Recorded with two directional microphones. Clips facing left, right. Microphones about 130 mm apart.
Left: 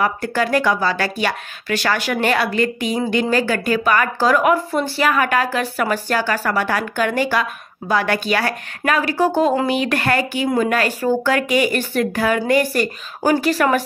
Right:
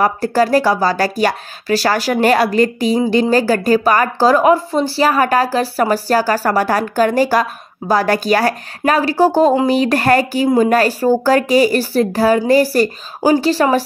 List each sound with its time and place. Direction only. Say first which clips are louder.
0.0 s speech: right 5 dB; 35° right (ahead or behind)